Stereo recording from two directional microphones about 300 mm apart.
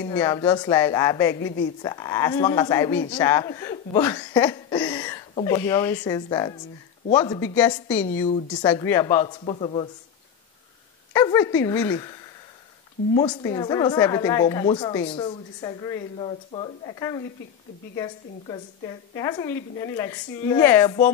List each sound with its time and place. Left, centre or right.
0.1 s speech: centre
11.1 s speech: centre